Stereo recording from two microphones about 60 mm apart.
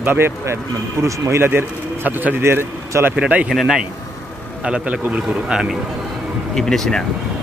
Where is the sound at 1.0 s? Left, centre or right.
Right.